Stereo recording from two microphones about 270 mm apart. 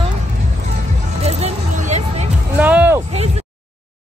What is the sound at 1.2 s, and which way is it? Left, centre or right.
Music, right.